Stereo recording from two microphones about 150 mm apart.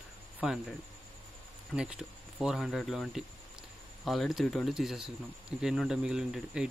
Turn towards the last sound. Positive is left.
turn(degrees=-5)  # may be behind; listen again after turning